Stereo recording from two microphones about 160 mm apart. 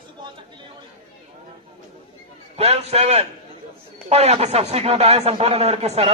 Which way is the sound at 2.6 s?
40° right (ahead or behind).